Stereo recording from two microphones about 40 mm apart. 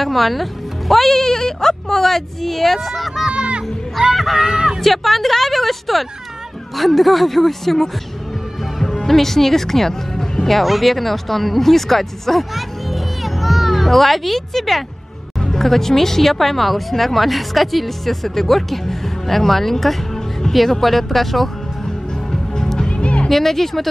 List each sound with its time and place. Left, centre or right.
0.0 s speech: centre
3.3 s speech: right
4.8 s speech: centre
22.6 s music: centre
22.8 s music: left
23.2 s speech: centre